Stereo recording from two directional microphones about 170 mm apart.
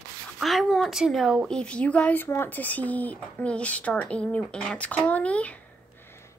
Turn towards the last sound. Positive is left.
turn(degrees=5)  # may be behind; listen again after turning